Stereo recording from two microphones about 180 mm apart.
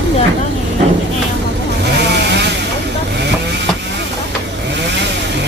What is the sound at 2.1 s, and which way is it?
Vehicle, 70° right (ahead or behind).